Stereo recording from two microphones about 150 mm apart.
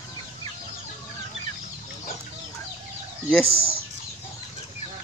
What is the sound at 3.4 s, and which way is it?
Speech, 90° right.